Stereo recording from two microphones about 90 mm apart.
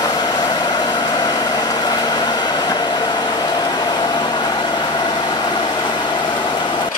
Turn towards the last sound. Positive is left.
turn(degrees=55)  # may be behind; listen again after turning